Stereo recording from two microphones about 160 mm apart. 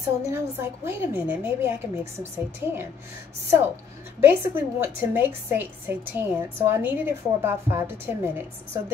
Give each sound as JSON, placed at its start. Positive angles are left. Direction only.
{"t": 0.3, "sound": "a woman's voice", "side_deg": -15}
{"t": 4.2, "sound": "a woman's voice", "side_deg": -15}